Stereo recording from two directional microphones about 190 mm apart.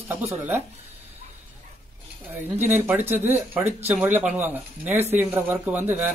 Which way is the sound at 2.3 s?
10° right (ahead or behind).